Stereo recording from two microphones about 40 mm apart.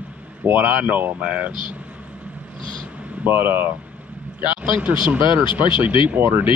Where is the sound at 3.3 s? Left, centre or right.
Right.